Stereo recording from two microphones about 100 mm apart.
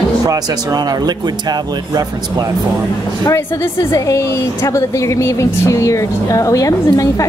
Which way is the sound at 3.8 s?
35° left (ahead or behind).